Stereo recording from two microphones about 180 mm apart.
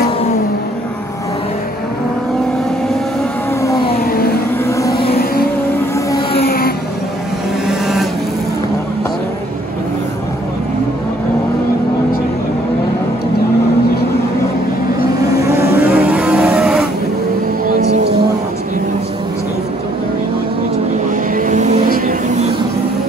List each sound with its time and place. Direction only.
3.9 s vehicle: 55° left (ahead or behind)
4.6 s music: 15° left (ahead or behind)
5.1 s music: 60° left (ahead or behind)
7.6 s vehicle: centre (ahead or behind)
15.1 s vehicle: 20° right (ahead or behind)
17.6 s music: 50° right (ahead or behind)
21.4 s vehicle: 45° right (ahead or behind)
21.8 s vehicle: 55° right (ahead or behind)